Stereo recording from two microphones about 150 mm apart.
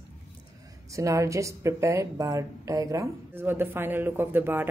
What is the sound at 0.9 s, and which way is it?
A woman's voice, 20° right (ahead or behind).